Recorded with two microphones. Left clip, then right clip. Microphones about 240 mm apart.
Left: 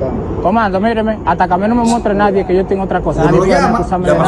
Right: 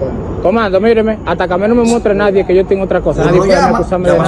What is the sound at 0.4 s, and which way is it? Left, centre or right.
Speech, left.